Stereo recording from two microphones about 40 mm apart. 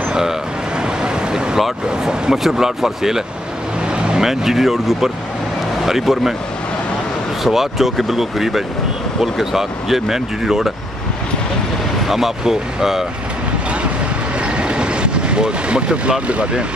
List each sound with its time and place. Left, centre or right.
0.1 s vehicle: centre
2.0 s speech: centre
3.9 s vehicle: right
4.2 s speech: centre
7.4 s speech: centre
12.1 s speech: centre
14.4 s vehicle: right